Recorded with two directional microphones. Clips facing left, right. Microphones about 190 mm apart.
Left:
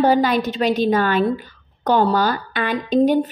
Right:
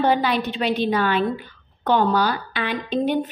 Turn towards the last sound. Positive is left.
turn(degrees=40)  # may be behind; listen again after turning